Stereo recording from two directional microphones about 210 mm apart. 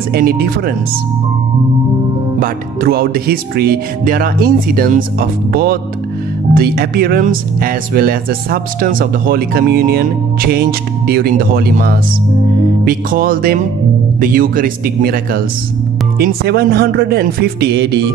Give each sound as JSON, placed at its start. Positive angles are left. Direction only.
{"t": 0.1, "sound": "speech", "side_deg": -45}
{"t": 2.4, "sound": "speech", "side_deg": -45}